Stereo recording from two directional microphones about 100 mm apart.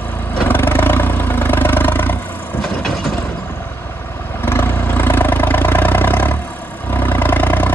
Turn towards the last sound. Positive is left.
turn(degrees=20)  # may be behind; listen again after turning